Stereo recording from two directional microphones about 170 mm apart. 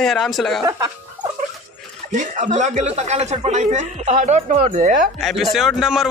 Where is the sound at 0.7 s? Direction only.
20° right (ahead or behind).